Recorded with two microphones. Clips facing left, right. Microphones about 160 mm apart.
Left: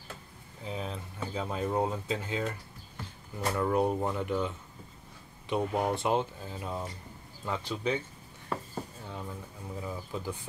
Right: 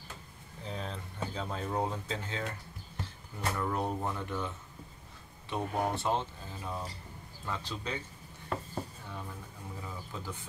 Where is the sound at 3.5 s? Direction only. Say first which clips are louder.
Left 7 dB; 15° left (ahead or behind).